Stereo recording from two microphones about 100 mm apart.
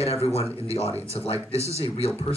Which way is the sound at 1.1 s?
85° left.